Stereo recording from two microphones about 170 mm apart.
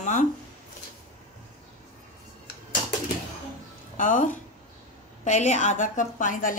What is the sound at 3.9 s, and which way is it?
A woman's voice, 50° left (ahead or behind).